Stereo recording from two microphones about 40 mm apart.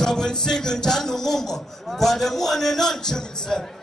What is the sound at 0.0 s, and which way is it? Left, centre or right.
Speech, centre.